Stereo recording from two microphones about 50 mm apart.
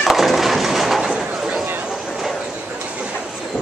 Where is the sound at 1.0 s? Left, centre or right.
Centre.